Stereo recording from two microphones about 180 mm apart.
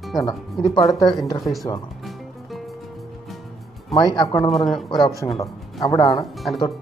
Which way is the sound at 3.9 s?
20° left (ahead or behind).